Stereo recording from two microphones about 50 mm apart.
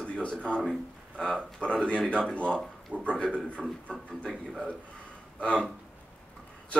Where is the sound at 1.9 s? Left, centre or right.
Left.